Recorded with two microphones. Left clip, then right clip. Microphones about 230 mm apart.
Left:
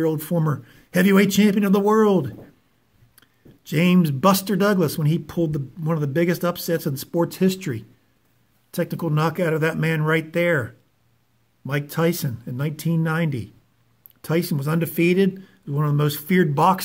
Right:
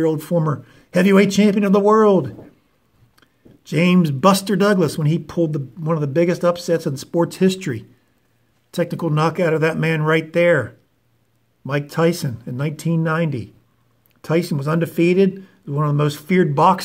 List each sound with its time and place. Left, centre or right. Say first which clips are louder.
0.0 s speech: right 4 dB; centre